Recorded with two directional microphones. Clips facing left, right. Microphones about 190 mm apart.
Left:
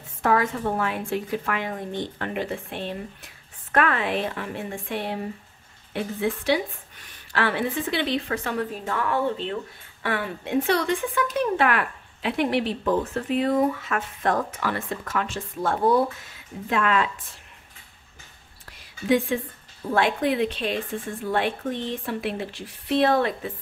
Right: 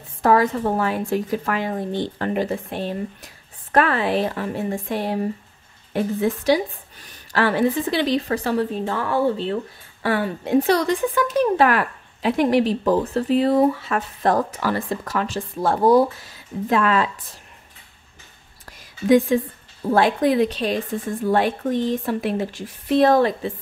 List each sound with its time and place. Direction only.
0.2 s a woman's voice: 35° right (ahead or behind)
18.7 s a sound: 40° right (ahead or behind)
19.9 s a woman's voice: 40° right (ahead or behind)